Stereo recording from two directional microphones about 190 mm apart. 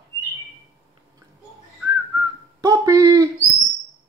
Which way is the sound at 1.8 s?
15° right (ahead or behind).